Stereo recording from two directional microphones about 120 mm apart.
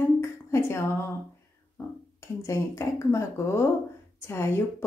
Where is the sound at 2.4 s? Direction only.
25° left (ahead or behind).